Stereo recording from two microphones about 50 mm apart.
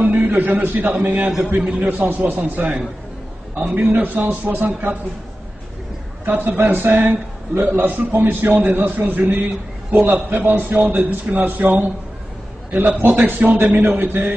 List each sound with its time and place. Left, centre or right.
0.3 s a man's voice: right
1.6 s a man's voice: right
1.9 s a man's voice: right
6.2 s a man's voice: right
12.7 s a man's voice: right